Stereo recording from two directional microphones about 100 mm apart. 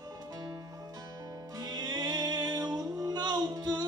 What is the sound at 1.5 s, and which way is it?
Music, 40° right (ahead or behind).